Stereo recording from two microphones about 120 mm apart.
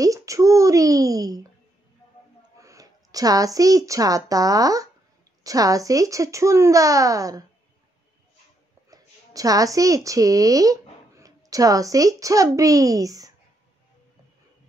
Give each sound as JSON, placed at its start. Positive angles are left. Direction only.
{"t": 0.0, "sound": "a sound", "side_deg": -25}
{"t": 2.6, "sound": "speech", "side_deg": -30}
{"t": 8.9, "sound": "a woman's voice", "side_deg": -30}